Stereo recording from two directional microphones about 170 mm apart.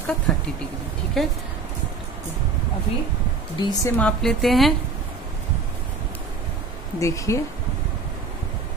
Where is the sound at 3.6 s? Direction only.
20° left (ahead or behind).